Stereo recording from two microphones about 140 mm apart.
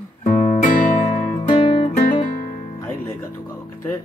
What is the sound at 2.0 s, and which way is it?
Guitar, 65° left (ahead or behind).